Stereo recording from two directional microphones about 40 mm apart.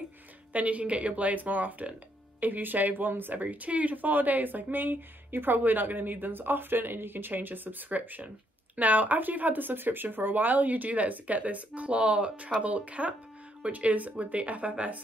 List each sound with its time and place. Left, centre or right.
0.5 s speech: right